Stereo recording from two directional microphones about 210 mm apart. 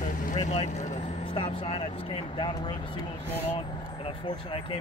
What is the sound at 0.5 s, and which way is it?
Speech, 30° left (ahead or behind).